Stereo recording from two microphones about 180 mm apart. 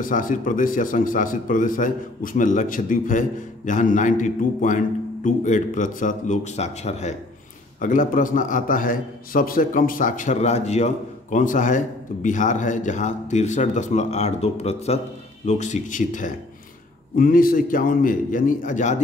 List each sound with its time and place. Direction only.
0.0 s a man's voice: 45° left (ahead or behind)